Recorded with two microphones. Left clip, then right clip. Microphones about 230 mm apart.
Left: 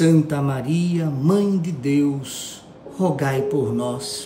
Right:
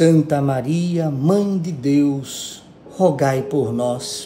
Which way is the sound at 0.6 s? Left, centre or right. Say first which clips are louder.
Right 1 dB; left.